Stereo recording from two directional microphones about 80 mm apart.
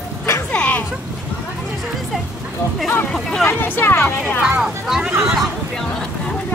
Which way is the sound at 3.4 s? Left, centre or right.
Left.